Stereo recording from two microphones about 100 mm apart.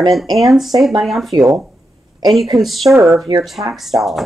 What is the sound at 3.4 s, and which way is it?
Speech, centre (ahead or behind).